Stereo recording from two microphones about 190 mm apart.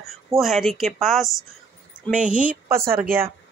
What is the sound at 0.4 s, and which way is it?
Speech, centre (ahead or behind).